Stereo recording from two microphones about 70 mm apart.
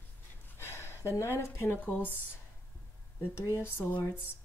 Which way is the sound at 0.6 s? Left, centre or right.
Left.